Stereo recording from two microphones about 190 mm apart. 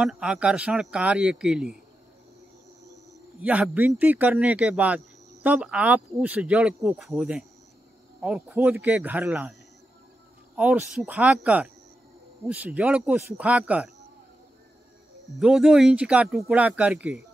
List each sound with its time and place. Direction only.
0.0 s speech: 5° right (ahead or behind)
3.4 s speech: 10° right (ahead or behind)
15.3 s speech: centre (ahead or behind)